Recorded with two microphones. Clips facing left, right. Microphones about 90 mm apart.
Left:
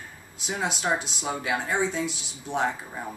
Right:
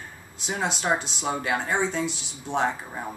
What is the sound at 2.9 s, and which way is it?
Speech, 15° right (ahead or behind).